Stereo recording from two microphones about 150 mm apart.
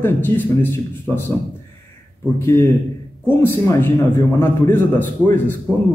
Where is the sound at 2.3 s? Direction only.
15° left (ahead or behind).